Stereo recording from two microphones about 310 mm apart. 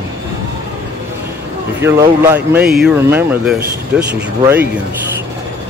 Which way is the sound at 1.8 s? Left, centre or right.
Centre.